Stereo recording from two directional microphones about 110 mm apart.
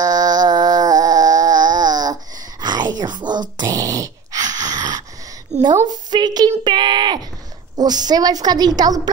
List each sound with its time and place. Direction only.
0.0 s a sound: 35° right (ahead or behind)
5.5 s a woman's voice: 90° right
6.0 s a woman's voice: 40° right (ahead or behind)